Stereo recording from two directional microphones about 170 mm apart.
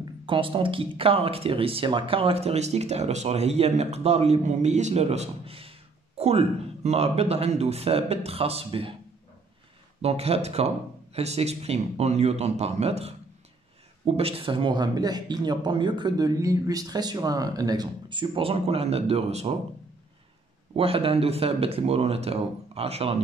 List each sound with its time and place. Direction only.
0.0 s speech: 30° right (ahead or behind)
10.0 s speech: 35° right (ahead or behind)
20.7 s speech: 35° right (ahead or behind)